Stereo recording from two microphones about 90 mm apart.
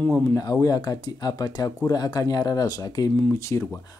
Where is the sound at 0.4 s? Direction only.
45° left (ahead or behind).